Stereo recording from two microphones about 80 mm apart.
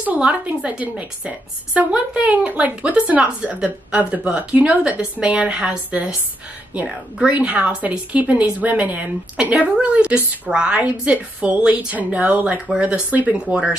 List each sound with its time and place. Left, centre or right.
0.0 s speech: centre